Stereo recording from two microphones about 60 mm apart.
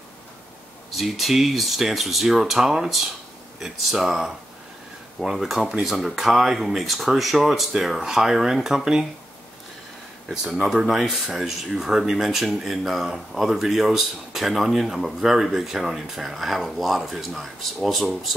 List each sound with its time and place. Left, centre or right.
0.9 s speech: centre
10.2 s speech: centre